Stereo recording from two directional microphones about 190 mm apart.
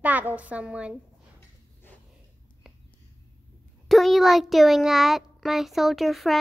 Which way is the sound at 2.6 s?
5° right (ahead or behind).